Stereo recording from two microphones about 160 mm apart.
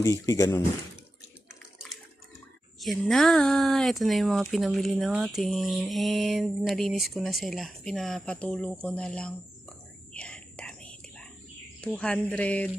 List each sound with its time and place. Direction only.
0.0 s speech: 20° left (ahead or behind)
1.5 s bathtub: centre (ahead or behind)
2.8 s speech: centre (ahead or behind)
10.1 s whispering: 5° left (ahead or behind)
11.8 s speech: 10° left (ahead or behind)